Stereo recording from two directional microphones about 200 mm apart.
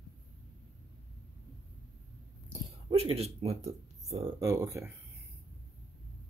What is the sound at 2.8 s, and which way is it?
Speech, 30° right (ahead or behind).